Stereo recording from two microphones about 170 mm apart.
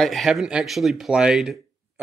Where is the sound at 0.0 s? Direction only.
Centre (ahead or behind).